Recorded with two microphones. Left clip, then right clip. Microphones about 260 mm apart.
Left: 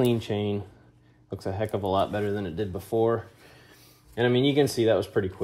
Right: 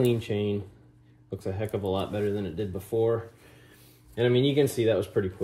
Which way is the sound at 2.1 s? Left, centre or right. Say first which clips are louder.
Even; centre.